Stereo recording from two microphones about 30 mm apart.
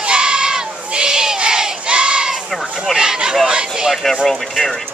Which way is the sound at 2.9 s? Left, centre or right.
Right.